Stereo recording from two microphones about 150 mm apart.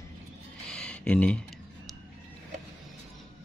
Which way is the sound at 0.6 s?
5° left (ahead or behind).